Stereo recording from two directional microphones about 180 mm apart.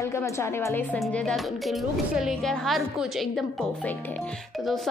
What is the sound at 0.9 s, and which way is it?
A woman's voice, centre (ahead or behind).